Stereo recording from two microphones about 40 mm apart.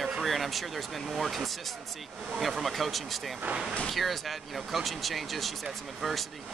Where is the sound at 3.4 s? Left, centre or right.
Right.